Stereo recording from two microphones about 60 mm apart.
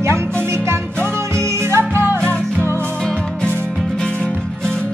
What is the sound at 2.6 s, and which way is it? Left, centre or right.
Music, left.